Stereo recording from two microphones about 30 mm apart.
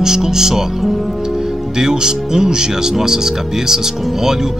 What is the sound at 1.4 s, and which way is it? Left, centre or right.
Speech, right.